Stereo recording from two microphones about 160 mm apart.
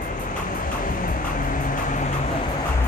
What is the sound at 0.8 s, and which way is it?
Music, 60° left (ahead or behind).